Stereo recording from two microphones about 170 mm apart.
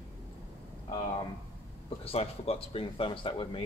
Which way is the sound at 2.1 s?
35° left (ahead or behind).